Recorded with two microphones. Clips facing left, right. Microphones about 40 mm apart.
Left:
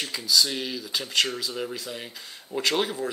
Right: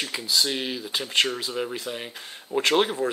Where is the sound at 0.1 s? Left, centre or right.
Right.